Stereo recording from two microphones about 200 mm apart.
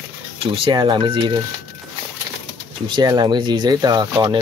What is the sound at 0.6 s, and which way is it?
Speech, 25° right (ahead or behind).